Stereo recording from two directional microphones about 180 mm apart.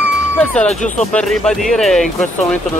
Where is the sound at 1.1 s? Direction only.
5° left (ahead or behind).